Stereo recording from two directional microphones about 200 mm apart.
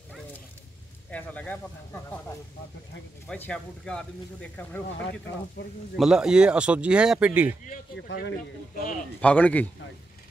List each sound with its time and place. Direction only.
1.1 s speech: 10° left (ahead or behind)
3.3 s speech: 5° left (ahead or behind)
5.9 s speech: 5° right (ahead or behind)
8.1 s speech: 55° left (ahead or behind)
9.2 s speech: 5° left (ahead or behind)